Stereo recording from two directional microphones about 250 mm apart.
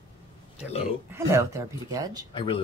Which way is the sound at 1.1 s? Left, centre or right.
Centre.